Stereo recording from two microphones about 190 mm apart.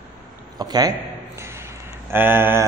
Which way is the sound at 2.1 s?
10° right (ahead or behind).